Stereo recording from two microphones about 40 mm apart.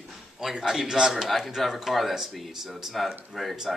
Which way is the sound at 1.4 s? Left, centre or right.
Centre.